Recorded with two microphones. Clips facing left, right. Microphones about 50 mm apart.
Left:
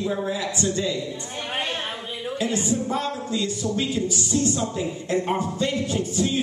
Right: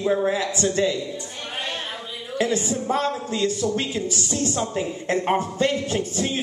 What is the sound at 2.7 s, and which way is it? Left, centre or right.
Speech, right.